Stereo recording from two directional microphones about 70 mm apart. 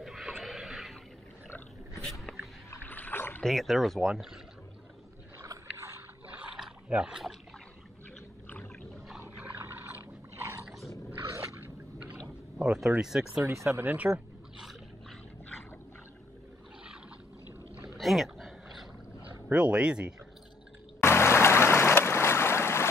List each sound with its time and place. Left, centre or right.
0.0 s a sound: centre
2.8 s rowboat: left
3.4 s speech: centre
5.4 s boat: right
6.9 s speech: centre
9.6 s a sound: right
11.6 s a sound: right
12.5 s speech: centre
13.5 s speech: right
13.9 s speech: centre
17.9 s a sound: centre
19.5 s speech: centre
21.0 s boat: left